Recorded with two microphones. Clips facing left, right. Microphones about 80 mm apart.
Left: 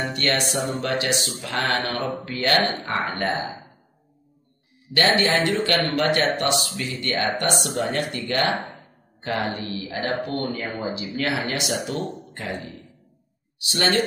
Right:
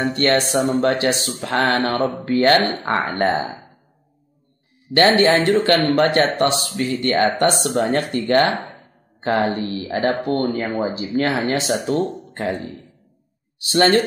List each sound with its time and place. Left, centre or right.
0.0 s speech: right
4.9 s speech: right
13.6 s speech: right